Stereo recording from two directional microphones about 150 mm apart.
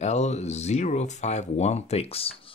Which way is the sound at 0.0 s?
50° left (ahead or behind).